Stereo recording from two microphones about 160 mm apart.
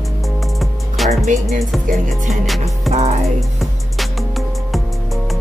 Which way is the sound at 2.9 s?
40° right (ahead or behind).